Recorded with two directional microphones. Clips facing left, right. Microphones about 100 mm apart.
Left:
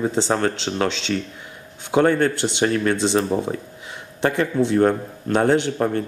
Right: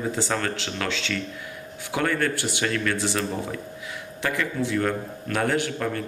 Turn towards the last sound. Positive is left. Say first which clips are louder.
# left 6 dB
turn(degrees=30)  # may be behind; listen again after turning